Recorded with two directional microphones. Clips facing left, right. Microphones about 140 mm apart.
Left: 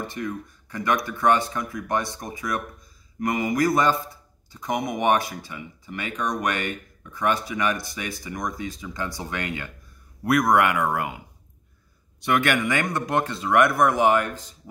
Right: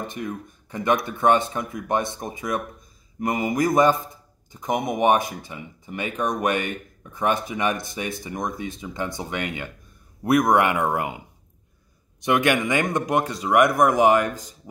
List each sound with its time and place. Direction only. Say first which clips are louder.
0.0 s speech: even; 20° right (ahead or behind)